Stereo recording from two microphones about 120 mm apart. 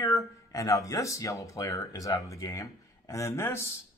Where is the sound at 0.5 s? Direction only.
25° left (ahead or behind).